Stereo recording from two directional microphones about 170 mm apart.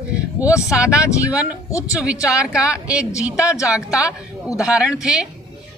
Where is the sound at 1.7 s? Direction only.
20° left (ahead or behind).